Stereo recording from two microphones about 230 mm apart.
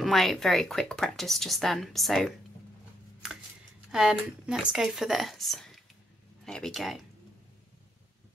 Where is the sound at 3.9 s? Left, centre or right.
Centre.